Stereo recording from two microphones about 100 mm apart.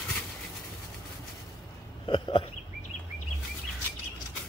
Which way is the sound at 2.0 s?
60° left (ahead or behind).